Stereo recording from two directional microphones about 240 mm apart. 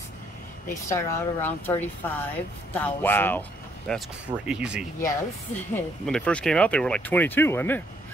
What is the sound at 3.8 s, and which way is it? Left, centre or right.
Speech, centre.